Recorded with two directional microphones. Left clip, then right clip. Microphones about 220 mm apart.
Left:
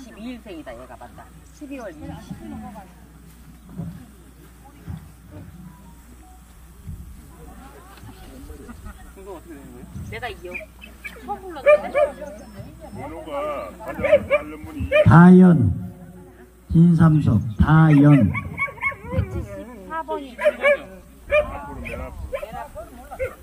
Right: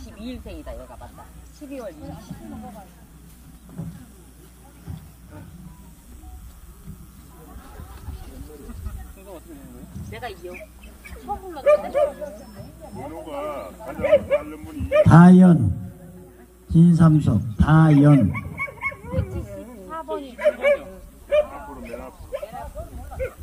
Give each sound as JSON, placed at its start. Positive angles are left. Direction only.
{"t": 0.0, "sound": "speech", "side_deg": -15}
{"t": 10.0, "sound": "speech", "side_deg": -5}
{"t": 12.8, "sound": "speech", "side_deg": 10}
{"t": 14.0, "sound": "speech", "side_deg": -5}
{"t": 15.0, "sound": "speech", "side_deg": -50}
{"t": 16.7, "sound": "speech", "side_deg": -50}
{"t": 18.2, "sound": "dog", "side_deg": -5}
{"t": 19.9, "sound": "dog", "side_deg": -15}
{"t": 20.3, "sound": "speech", "side_deg": -5}
{"t": 21.3, "sound": "dog", "side_deg": -5}
{"t": 22.9, "sound": "a sound", "side_deg": 10}